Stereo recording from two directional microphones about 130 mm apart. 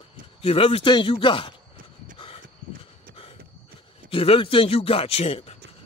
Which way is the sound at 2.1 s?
45° left (ahead or behind).